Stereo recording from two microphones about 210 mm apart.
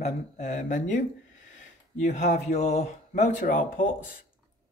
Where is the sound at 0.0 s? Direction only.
35° left (ahead or behind).